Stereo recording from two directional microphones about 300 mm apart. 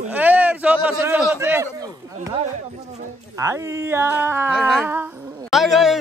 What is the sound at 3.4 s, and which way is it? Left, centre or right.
A man's voice, centre.